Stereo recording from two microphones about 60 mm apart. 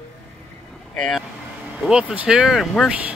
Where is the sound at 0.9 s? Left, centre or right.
Centre.